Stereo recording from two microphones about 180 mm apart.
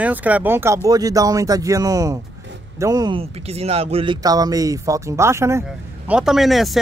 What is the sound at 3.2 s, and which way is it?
Speech, 35° right (ahead or behind).